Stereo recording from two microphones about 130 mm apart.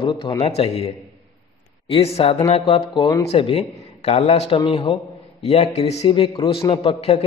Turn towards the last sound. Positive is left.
turn(degrees=45)  # may be behind; listen again after turning